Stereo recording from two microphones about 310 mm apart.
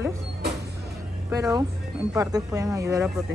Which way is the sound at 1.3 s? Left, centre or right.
Centre.